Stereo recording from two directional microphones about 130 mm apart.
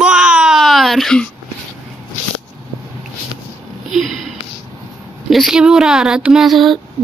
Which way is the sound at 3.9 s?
Centre (ahead or behind).